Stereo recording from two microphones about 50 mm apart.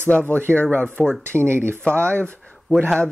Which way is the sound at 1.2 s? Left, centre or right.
Right.